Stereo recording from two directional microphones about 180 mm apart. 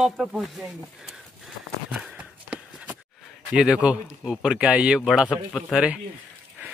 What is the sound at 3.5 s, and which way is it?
Speech, 5° right (ahead or behind).